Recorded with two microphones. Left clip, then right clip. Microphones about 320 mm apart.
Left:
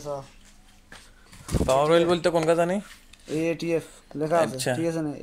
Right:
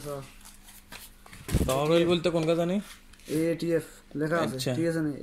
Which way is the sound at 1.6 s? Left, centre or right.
Left.